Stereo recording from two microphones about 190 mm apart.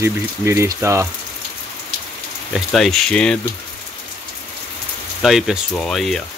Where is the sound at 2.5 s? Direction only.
Centre (ahead or behind).